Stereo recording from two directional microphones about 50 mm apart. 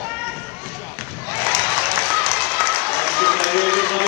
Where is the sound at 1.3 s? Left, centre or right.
Left.